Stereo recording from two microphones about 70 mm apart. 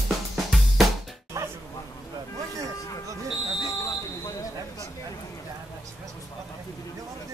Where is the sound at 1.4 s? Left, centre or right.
Right.